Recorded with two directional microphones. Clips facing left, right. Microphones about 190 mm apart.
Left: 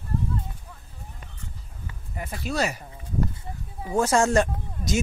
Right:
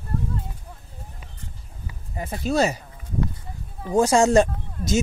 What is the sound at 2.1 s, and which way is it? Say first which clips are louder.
Speech: right 6 dB; 25° right (ahead or behind).